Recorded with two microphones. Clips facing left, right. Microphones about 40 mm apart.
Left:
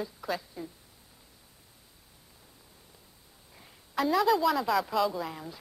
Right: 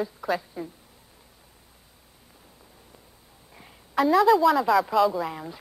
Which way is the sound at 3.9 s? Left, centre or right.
Centre.